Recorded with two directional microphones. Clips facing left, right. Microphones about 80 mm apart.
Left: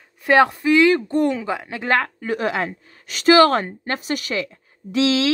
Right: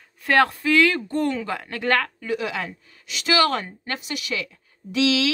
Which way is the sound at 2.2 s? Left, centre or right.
Left.